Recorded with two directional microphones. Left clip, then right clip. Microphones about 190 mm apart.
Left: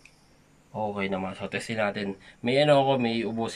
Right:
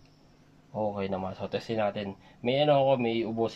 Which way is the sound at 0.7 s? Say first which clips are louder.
Left 1 dB; 20° right (ahead or behind).